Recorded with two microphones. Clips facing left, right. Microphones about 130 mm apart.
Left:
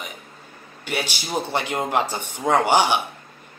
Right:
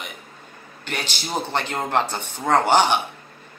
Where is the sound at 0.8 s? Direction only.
10° left (ahead or behind).